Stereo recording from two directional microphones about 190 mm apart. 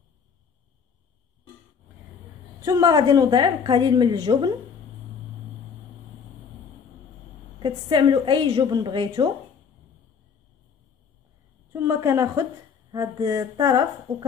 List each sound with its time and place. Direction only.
2.6 s a woman's voice: 20° right (ahead or behind)
7.6 s a woman's voice: 25° right (ahead or behind)
11.7 s a woman's voice: 15° right (ahead or behind)